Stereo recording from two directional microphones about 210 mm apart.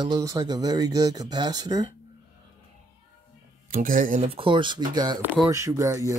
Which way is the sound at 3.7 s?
40° right (ahead or behind).